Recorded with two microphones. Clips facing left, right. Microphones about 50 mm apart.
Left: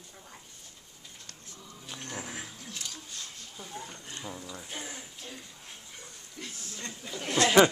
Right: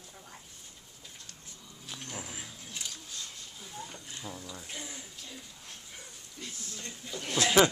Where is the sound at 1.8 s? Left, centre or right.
Centre.